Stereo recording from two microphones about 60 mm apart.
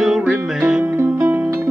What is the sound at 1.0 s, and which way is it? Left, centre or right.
Music, right.